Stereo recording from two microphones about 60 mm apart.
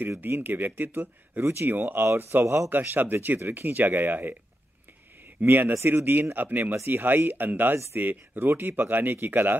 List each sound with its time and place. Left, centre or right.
0.2 s speech: right
1.4 s speech: right
1.7 s speech: right
2.4 s a man's voice: right
2.7 s speech: right
5.4 s speech: right